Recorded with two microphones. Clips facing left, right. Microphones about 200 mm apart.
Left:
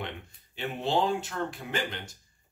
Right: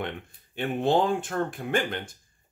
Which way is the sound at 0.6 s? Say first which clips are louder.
Right 5 dB; 50° right (ahead or behind).